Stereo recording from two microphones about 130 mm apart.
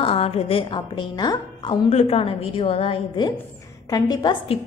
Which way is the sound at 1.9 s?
50° left (ahead or behind).